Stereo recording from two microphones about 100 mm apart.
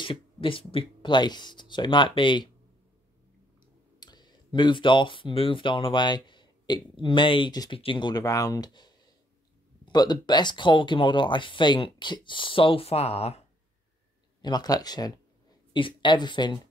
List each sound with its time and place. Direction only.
0.0 s speech: 60° left (ahead or behind)
4.0 s speech: 45° left (ahead or behind)
8.1 s speech: 35° left (ahead or behind); by 13.4 s 85° left
14.4 s speech: 45° left (ahead or behind)
15.7 s speech: 55° left (ahead or behind)